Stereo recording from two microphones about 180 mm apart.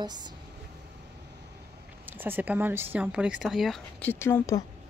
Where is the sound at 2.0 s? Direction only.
10° right (ahead or behind); by 4.6 s 15° left (ahead or behind).